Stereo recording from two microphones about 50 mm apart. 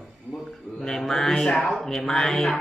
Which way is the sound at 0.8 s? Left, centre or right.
Centre.